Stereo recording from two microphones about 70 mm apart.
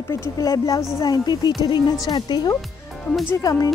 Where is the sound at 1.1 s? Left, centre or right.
Left.